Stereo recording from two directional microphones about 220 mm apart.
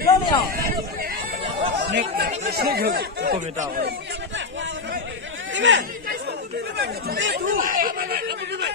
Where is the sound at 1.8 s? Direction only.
55° right (ahead or behind).